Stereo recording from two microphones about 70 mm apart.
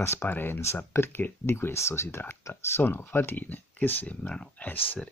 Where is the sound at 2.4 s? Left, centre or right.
Left.